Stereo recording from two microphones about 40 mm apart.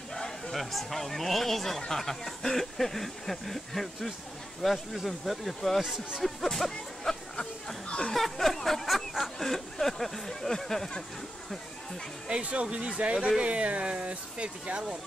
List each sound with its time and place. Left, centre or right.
0.1 s a sound: centre
0.6 s speech: centre
12.3 s speech: right